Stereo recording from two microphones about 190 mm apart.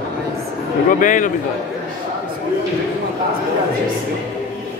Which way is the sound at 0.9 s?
45° left (ahead or behind).